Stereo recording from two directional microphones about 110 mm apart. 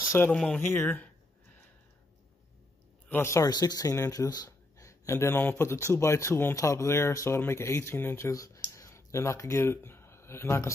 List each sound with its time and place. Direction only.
0.3 s speech: 5° left (ahead or behind)
0.6 s speech: 20° left (ahead or behind)
3.1 s speech: 25° left (ahead or behind)
3.4 s speech: 35° left (ahead or behind)
8.7 s a sound: 30° left (ahead or behind)